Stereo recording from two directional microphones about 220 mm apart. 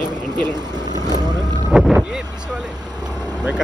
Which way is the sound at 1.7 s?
5° right (ahead or behind).